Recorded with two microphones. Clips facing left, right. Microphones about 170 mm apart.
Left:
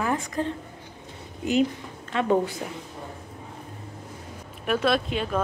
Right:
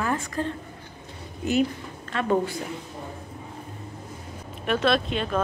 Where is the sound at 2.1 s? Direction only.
15° left (ahead or behind).